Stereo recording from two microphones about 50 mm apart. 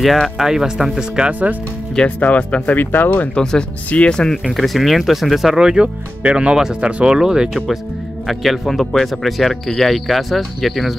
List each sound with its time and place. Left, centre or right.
0.4 s speech: centre
1.1 s speech: centre
2.0 s speech: left
2.8 s speech: left
3.3 s speech: left
4.5 s speech: centre
8.3 s speech: centre